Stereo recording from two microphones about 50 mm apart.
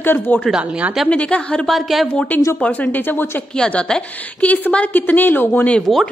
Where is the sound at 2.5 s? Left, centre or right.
Left.